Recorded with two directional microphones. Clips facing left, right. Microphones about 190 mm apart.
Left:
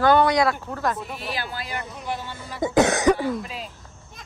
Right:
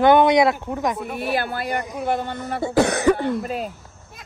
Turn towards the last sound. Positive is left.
turn(degrees=-50)  # may be behind; listen again after turning